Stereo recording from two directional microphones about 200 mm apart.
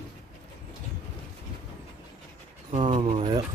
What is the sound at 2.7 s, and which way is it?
Speech, 25° right (ahead or behind).